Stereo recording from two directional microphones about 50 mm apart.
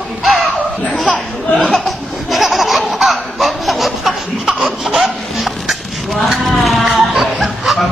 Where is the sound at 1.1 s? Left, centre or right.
Left.